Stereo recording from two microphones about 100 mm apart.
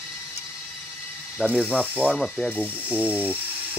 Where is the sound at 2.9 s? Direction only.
15° right (ahead or behind).